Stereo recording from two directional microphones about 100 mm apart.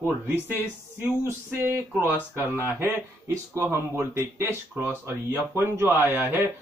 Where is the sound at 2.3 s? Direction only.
25° right (ahead or behind).